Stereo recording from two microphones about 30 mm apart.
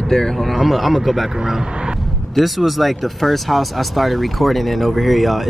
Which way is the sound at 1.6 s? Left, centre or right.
Right.